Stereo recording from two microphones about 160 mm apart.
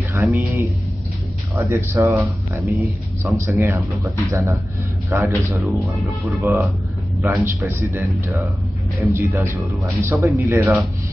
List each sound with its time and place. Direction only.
0.1 s speech: 15° right (ahead or behind)
5.7 s speech: centre (ahead or behind)
6.4 s speech: 10° right (ahead or behind)